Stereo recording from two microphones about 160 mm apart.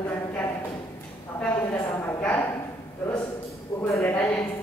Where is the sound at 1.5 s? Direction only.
15° left (ahead or behind).